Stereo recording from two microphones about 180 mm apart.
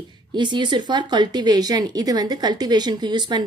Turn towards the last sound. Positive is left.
turn(degrees=-25)  # may be behind; listen again after turning